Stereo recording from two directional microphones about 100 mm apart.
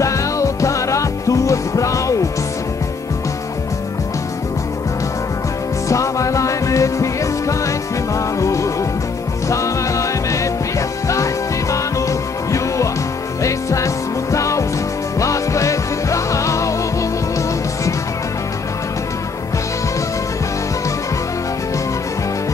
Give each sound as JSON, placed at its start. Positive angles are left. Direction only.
{"t": 0.0, "sound": "music", "side_deg": 30}
{"t": 5.9, "sound": "music", "side_deg": 30}
{"t": 11.7, "sound": "music", "side_deg": 30}